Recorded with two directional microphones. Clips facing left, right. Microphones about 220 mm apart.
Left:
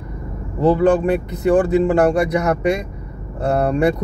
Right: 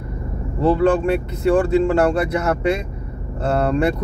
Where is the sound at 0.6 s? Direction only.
15° left (ahead or behind).